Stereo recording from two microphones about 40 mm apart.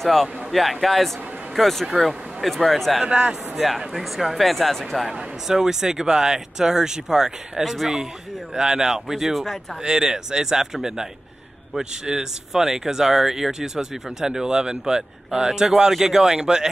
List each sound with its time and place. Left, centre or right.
0.0 s speech: centre
3.1 s speech: right
3.5 s speech: centre
5.5 s speech: centre
12.1 s speech: centre